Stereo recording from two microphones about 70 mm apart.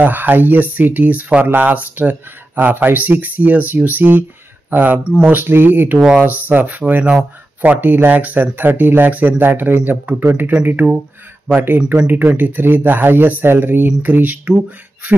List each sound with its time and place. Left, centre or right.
0.0 s speech: right